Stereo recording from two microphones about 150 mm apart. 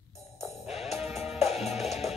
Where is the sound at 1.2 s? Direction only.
45° left (ahead or behind).